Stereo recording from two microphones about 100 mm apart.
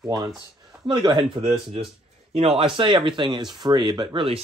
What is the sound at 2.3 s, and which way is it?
Speech, 85° right.